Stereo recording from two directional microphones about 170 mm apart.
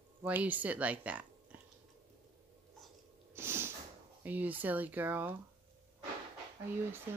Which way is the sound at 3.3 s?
15° right (ahead or behind).